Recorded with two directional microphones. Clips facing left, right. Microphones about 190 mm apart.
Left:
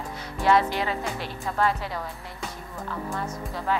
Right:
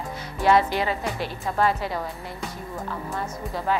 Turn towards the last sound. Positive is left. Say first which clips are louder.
# right 2 dB
turn(degrees=-10)  # may be behind; listen again after turning